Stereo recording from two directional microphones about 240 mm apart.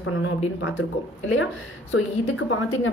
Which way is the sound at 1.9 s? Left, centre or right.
Left.